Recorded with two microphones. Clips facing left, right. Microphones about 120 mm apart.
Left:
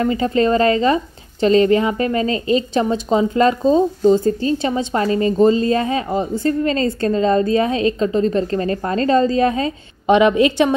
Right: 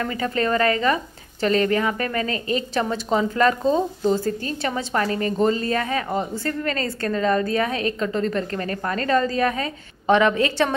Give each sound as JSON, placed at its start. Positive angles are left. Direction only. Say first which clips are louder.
{"t": 0.0, "sound": "a woman's voice", "louder": "left 7 dB", "side_deg": 25}